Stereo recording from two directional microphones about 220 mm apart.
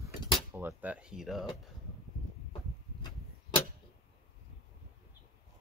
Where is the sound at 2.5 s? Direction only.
20° left (ahead or behind).